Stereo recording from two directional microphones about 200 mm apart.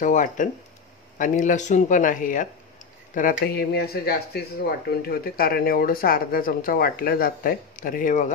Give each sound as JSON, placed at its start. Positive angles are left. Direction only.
{"t": 0.0, "sound": "speech", "side_deg": 40}